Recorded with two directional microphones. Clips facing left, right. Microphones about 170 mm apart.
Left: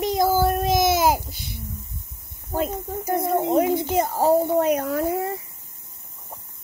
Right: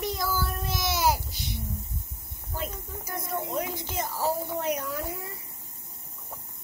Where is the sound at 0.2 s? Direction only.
50° left (ahead or behind).